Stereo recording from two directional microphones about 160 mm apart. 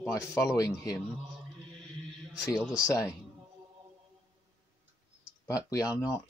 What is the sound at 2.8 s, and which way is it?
Speech, 20° left (ahead or behind).